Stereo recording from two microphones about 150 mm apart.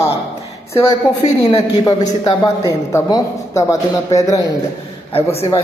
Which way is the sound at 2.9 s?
25° left (ahead or behind).